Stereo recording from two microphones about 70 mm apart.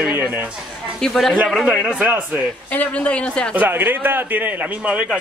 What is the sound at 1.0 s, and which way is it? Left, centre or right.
Speech, centre.